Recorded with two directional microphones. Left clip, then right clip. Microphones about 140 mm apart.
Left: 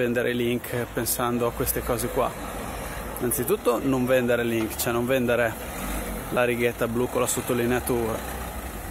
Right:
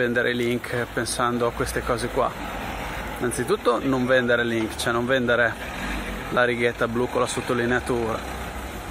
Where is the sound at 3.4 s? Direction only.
15° left (ahead or behind).